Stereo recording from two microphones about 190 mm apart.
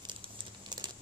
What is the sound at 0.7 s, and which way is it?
Patter, 20° right (ahead or behind).